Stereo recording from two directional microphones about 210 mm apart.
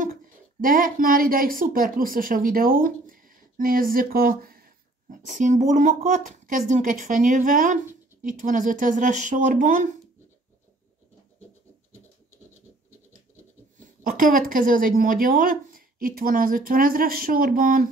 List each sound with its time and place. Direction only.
0.0 s speech: 40° right (ahead or behind)
14.0 s speech: 40° right (ahead or behind)